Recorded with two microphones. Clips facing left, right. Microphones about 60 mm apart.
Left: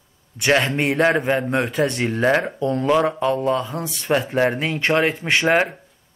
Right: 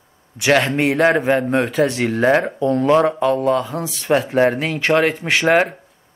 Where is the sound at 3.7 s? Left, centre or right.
Centre.